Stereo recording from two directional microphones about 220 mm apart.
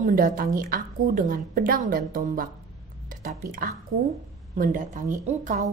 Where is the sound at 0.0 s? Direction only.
40° right (ahead or behind).